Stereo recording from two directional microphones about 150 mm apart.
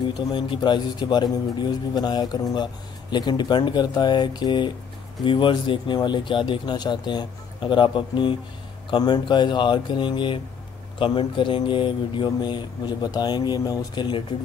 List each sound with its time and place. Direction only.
0.3 s speech: 30° left (ahead or behind)